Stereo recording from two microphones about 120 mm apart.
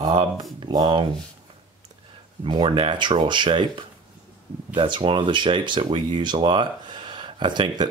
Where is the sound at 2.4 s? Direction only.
45° right (ahead or behind).